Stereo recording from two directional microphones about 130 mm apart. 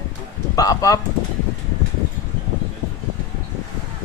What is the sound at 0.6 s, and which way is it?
Speech, 30° left (ahead or behind).